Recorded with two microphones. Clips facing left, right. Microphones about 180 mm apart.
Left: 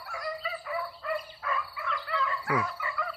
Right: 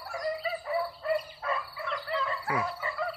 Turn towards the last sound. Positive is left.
turn(degrees=-30)  # may be behind; listen again after turning